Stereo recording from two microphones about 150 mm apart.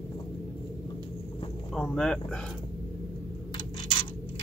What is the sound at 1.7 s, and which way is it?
Speech, 5° left (ahead or behind).